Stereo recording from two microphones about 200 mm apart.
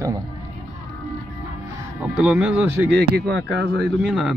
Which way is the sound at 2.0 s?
5° right (ahead or behind).